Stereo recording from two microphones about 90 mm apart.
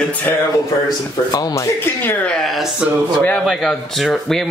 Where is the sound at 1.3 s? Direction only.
45° left (ahead or behind).